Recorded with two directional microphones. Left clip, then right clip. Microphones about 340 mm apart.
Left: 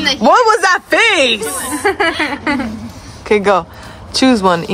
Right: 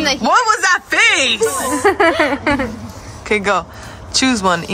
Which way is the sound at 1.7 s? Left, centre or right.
Right.